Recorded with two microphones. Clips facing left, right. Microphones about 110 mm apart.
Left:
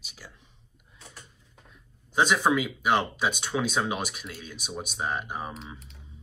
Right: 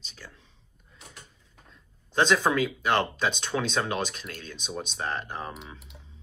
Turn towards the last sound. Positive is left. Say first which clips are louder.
# left 1 dB
turn(degrees=10)  # may be behind; listen again after turning